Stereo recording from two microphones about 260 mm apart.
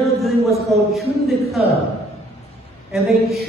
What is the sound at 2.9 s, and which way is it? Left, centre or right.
Speech, centre.